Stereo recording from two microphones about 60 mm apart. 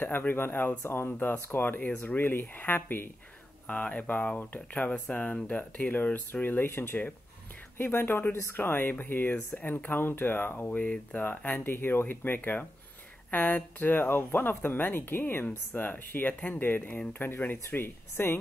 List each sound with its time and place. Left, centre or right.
0.3 s speech: left
3.6 s speech: left
10.7 s speech: left